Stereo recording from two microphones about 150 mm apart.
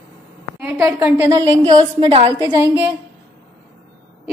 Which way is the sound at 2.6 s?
15° right (ahead or behind).